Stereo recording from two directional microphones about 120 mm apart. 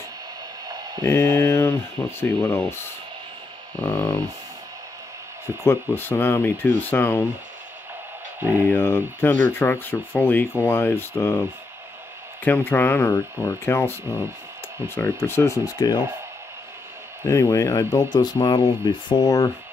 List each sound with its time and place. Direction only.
1.0 s speech: 20° left (ahead or behind)
5.6 s speech: 20° left (ahead or behind)
8.4 s speech: 15° right (ahead or behind)
8.6 s speech: 20° left (ahead or behind)
12.4 s speech: 15° left (ahead or behind)
15.0 s speech: 20° left (ahead or behind)
17.3 s speech: 25° left (ahead or behind)